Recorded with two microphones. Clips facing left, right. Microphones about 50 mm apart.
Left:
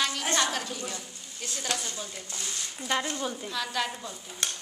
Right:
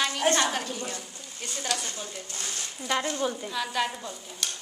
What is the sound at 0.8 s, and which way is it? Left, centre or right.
Speech, centre.